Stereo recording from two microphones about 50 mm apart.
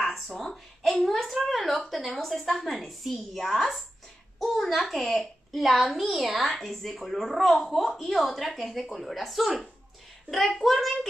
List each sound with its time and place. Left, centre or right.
0.0 s a woman's voice: centre